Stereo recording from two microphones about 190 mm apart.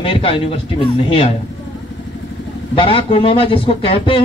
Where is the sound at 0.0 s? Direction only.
30° left (ahead or behind).